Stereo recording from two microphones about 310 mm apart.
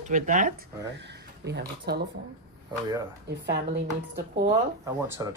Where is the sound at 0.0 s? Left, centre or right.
Right.